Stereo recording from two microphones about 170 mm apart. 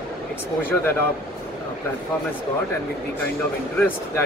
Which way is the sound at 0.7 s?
15° left (ahead or behind).